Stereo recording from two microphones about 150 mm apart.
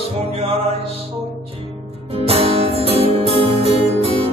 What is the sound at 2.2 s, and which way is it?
Music, 40° right (ahead or behind).